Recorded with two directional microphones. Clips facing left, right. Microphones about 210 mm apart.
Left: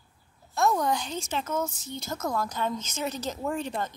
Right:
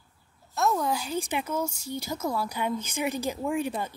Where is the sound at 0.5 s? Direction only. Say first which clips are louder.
Left 1 dB; 5° right (ahead or behind).